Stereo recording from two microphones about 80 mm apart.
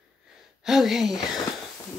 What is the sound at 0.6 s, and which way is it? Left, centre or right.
Speech, centre.